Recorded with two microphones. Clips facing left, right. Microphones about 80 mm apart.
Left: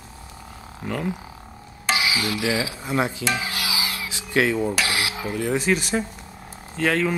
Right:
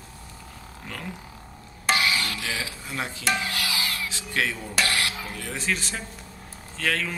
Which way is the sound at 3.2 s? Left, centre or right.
Centre.